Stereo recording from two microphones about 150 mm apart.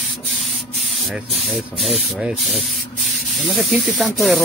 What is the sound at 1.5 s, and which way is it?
Speech, centre (ahead or behind).